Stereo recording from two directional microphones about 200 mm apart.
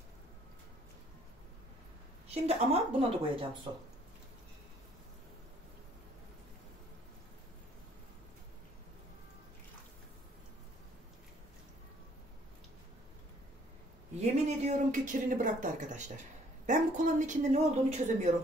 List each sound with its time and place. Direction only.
2.2 s speech: 30° right (ahead or behind)
14.2 s speech: 35° right (ahead or behind)